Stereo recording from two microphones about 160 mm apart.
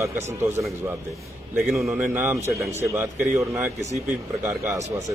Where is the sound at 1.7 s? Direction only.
5° right (ahead or behind).